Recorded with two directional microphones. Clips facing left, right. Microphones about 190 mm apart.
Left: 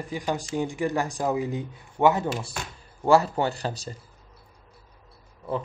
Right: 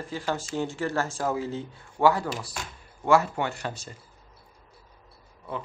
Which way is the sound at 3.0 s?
35° left (ahead or behind).